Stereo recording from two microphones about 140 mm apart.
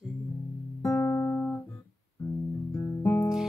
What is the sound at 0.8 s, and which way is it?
Music, 20° left (ahead or behind).